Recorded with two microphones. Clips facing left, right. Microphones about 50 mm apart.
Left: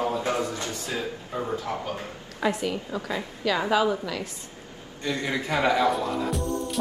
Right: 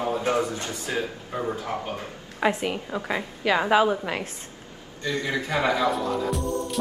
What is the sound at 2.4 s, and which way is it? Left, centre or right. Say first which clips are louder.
A woman's voice: right 2 dB; right.